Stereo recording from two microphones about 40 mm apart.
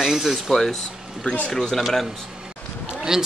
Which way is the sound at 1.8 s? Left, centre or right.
Centre.